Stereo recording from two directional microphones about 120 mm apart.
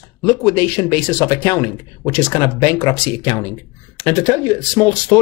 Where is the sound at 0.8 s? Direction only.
30° left (ahead or behind).